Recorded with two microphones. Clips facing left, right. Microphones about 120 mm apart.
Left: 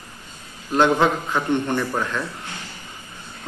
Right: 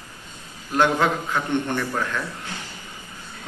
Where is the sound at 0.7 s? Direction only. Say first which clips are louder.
Left 2 dB; 15° left (ahead or behind).